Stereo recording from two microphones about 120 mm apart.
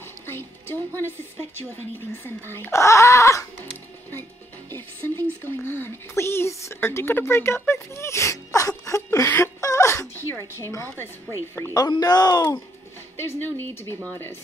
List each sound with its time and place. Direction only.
0.3 s speech: 20° left (ahead or behind)
4.6 s speech: 20° left (ahead or behind); by 12.5 s 35° left (ahead or behind)
13.2 s speech: 20° left (ahead or behind)